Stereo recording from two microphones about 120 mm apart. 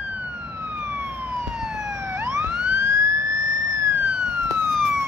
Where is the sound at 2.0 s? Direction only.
20° right (ahead or behind).